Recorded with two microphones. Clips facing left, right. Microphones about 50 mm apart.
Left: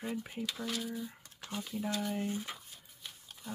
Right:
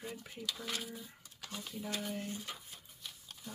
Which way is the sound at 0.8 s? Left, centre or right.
Centre.